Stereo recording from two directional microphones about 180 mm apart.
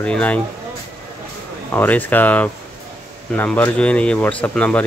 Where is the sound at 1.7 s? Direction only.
10° left (ahead or behind).